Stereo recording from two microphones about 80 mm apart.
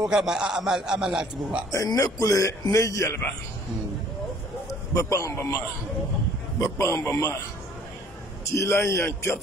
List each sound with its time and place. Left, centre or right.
0.0 s a man's voice: centre
1.7 s a man's voice: left
4.6 s a man's voice: left
6.6 s a man's voice: left
8.5 s a man's voice: left